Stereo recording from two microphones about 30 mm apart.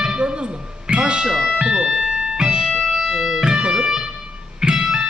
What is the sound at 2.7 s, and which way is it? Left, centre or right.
Music, centre.